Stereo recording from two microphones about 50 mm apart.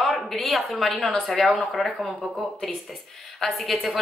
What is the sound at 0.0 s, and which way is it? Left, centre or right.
A woman's voice, centre.